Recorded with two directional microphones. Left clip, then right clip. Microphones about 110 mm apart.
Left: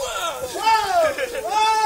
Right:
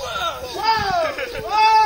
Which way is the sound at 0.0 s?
20° left (ahead or behind).